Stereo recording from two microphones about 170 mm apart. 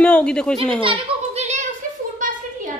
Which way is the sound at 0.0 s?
5° left (ahead or behind).